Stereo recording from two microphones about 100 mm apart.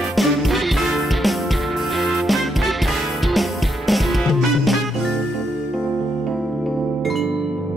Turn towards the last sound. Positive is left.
turn(degrees=0)  # may be behind; listen again after turning